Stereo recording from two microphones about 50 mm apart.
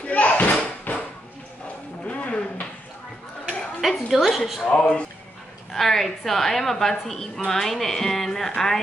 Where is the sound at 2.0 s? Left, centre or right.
Left.